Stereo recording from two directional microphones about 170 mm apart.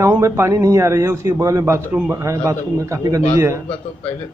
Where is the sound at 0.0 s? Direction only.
15° right (ahead or behind).